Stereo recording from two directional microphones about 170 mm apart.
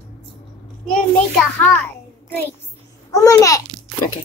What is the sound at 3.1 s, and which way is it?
Speech, 20° left (ahead or behind).